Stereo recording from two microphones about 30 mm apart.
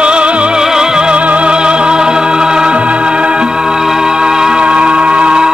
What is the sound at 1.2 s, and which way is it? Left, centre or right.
Music, right.